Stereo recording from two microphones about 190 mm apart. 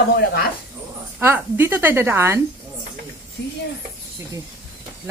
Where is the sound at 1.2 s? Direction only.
10° right (ahead or behind).